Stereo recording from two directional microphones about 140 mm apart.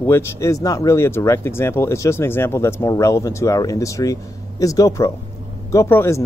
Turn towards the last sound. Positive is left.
turn(degrees=20)  # may be behind; listen again after turning